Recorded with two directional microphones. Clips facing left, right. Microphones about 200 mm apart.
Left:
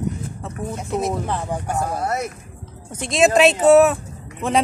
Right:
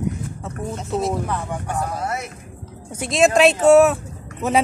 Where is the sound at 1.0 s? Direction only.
30° left (ahead or behind).